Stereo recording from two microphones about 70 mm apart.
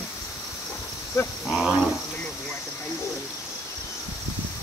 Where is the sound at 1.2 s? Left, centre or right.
Left.